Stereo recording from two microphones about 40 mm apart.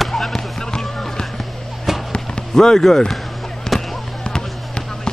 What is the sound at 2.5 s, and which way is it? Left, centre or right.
Speech, centre.